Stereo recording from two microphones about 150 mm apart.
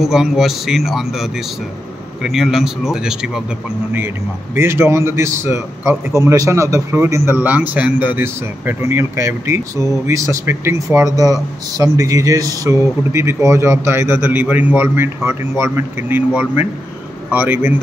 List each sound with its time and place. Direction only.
0.0 s a man's voice: centre (ahead or behind)
4.6 s a man's voice: 15° right (ahead or behind)